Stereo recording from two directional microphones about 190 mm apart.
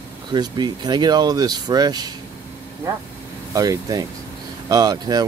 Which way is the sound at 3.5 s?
20° right (ahead or behind).